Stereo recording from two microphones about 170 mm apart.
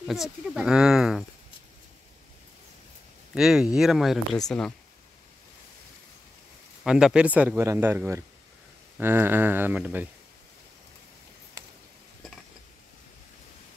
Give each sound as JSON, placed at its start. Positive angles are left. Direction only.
{"t": 0.0, "sound": "speech", "side_deg": -5}
{"t": 3.3, "sound": "speech", "side_deg": -5}
{"t": 6.8, "sound": "speech", "side_deg": -5}
{"t": 11.6, "sound": "a sound", "side_deg": -15}